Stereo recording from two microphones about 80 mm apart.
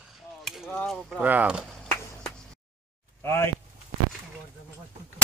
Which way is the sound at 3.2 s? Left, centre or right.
Left.